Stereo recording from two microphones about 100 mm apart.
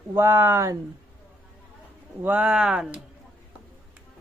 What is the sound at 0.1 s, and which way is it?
Speech, 25° right (ahead or behind).